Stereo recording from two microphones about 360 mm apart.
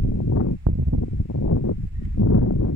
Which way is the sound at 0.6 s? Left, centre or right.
Right.